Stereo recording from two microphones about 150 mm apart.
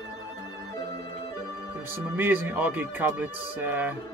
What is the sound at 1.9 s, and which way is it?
Speech, 15° right (ahead or behind).